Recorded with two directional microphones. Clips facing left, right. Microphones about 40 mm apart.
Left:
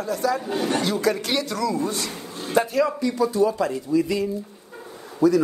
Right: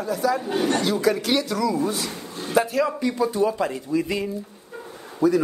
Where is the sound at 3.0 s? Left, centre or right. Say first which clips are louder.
Left 1 dB; right.